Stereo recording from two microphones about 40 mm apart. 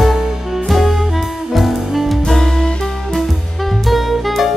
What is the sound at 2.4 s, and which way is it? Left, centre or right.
Music, centre.